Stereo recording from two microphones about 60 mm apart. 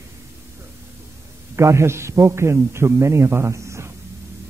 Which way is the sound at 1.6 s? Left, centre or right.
Right.